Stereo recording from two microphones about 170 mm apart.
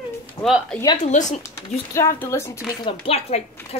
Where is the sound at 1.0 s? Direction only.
45° left (ahead or behind).